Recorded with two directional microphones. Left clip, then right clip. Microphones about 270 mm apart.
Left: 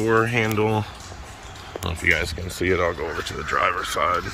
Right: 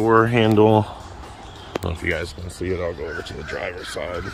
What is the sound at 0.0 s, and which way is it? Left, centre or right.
Speech, centre.